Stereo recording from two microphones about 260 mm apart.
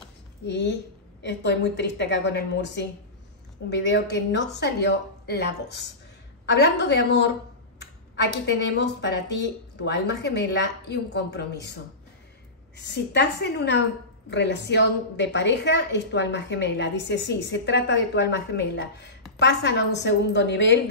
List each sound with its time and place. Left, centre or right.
0.5 s a woman's voice: left